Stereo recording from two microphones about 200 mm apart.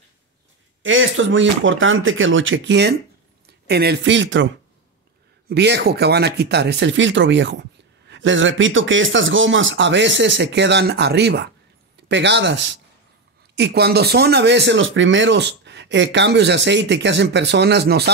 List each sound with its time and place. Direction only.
0.8 s speech: 75° right (ahead or behind)
5.5 s speech: 60° right (ahead or behind)